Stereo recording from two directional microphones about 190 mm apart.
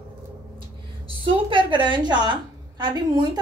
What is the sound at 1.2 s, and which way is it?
A woman's voice, 25° right (ahead or behind).